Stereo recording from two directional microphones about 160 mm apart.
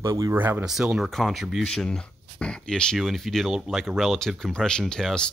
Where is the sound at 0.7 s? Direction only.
Centre (ahead or behind).